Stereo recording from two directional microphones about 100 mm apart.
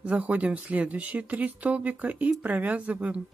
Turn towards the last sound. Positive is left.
turn(degrees=-15)  # may be behind; listen again after turning